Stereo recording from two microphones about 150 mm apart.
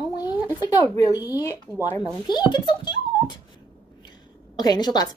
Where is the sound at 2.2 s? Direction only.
30° left (ahead or behind).